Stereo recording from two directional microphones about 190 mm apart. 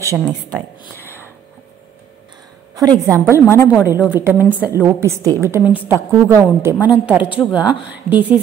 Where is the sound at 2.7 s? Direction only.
20° right (ahead or behind).